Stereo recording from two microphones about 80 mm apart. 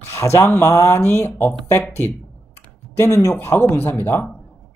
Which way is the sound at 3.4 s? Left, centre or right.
Left.